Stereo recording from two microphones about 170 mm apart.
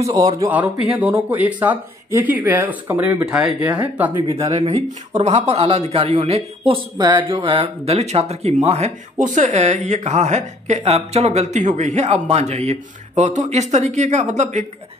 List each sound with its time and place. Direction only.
0.0 s speech: 20° right (ahead or behind)
0.4 s speech: 10° right (ahead or behind)
4.3 s speech: 35° right (ahead or behind)